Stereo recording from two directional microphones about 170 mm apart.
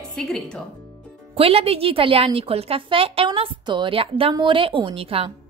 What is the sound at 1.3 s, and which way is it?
A woman's voice, 35° right (ahead or behind).